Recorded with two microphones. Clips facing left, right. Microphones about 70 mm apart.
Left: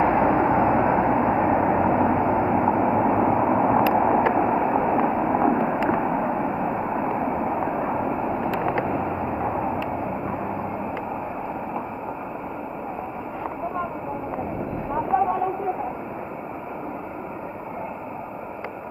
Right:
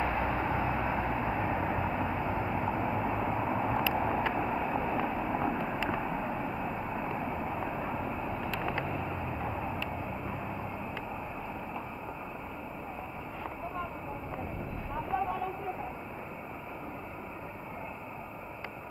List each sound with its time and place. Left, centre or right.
0.0 s vehicle: left
14.9 s vehicle: left